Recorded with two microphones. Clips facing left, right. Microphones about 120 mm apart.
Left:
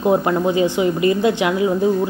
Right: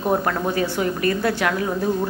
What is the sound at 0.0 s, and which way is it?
Speech, 15° left (ahead or behind).